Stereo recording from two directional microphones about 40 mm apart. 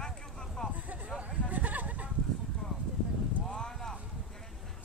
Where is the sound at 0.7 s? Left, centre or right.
Right.